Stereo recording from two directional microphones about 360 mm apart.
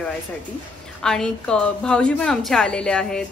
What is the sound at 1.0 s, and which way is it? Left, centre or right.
A woman's voice, centre.